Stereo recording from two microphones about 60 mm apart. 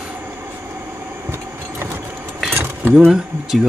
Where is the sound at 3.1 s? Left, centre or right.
Centre.